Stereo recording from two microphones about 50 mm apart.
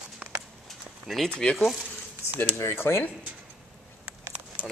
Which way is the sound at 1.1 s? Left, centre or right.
Centre.